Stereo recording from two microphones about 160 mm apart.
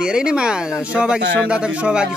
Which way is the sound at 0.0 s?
5° right (ahead or behind).